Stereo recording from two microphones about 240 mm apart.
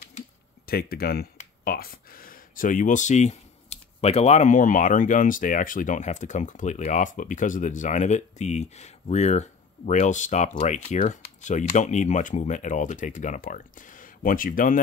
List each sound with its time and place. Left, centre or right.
0.7 s speech: left